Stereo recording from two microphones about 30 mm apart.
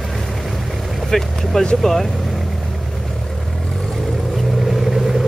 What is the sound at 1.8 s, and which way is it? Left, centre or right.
Speech, centre.